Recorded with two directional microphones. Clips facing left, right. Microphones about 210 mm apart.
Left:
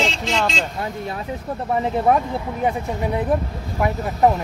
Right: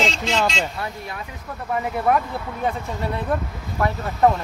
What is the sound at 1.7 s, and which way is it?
Speech, 25° left (ahead or behind).